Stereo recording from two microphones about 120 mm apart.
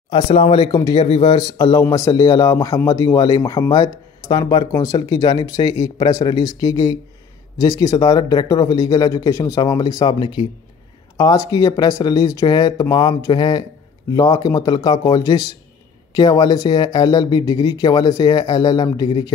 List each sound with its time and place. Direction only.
0.1 s speech: 45° left (ahead or behind)
0.7 s speech: 30° left (ahead or behind)
1.0 s speech: 60° left (ahead or behind)
1.3 s speech: 30° left (ahead or behind)